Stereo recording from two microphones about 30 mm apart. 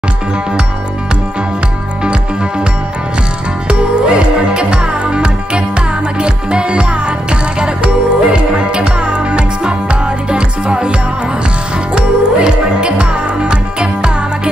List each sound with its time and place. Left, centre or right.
3.6 s music: right